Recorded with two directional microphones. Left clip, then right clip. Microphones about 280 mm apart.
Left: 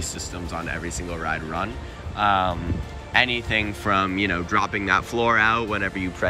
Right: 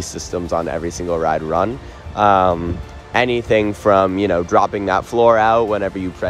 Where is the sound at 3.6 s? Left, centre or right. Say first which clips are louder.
Right 9 dB; right.